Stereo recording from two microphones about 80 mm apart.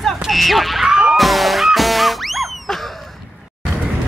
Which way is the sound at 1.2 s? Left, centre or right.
Centre.